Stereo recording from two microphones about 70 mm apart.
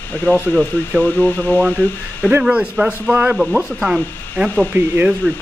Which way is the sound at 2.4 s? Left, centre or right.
Centre.